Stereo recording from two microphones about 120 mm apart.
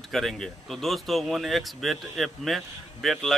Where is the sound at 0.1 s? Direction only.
5° left (ahead or behind).